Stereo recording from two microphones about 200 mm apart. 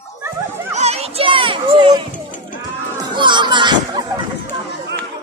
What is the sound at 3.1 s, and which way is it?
Music, 25° right (ahead or behind).